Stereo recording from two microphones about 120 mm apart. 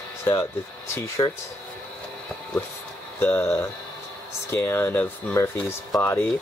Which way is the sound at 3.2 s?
15° left (ahead or behind).